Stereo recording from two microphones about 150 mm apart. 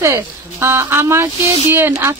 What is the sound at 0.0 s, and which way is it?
Speech, 15° right (ahead or behind).